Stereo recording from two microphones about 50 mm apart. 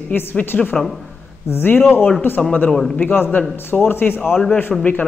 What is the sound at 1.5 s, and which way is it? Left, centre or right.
Speech, left.